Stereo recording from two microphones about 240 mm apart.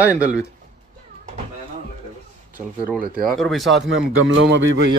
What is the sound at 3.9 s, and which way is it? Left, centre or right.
Speech, right.